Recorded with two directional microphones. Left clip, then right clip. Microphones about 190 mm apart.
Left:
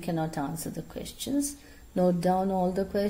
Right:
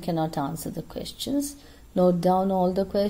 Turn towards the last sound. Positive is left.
turn(degrees=-20)  # may be behind; listen again after turning